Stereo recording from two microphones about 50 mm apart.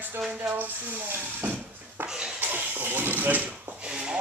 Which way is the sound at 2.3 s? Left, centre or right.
Right.